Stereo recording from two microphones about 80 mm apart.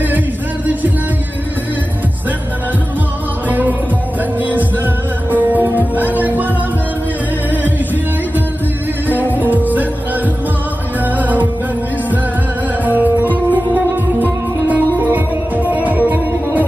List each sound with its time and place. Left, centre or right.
3.4 s music: right
7.5 s music: right
9.0 s music: right
11.1 s music: right
12.8 s music: right